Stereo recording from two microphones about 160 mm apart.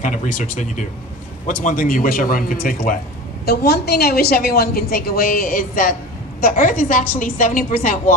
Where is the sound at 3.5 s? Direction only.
90° left.